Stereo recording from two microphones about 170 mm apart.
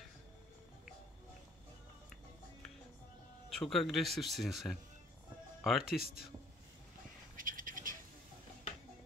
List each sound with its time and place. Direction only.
3.4 s speech: centre (ahead or behind)
7.3 s bird: 55° right (ahead or behind)